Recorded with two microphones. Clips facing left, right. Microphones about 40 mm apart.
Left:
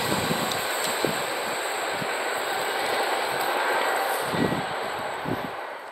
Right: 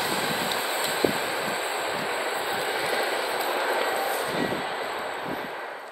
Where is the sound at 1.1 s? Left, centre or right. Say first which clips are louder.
Even; centre.